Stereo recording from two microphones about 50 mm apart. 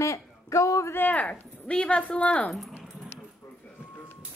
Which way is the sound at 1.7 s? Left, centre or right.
Centre.